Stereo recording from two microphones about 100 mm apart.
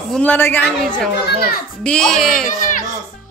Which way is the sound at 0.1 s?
15° left (ahead or behind).